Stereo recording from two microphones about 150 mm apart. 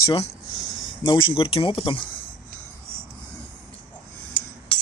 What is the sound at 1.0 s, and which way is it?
Speech, 35° left (ahead or behind).